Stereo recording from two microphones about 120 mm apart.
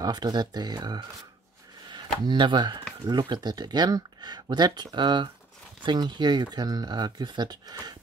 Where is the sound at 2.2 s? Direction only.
40° right (ahead or behind).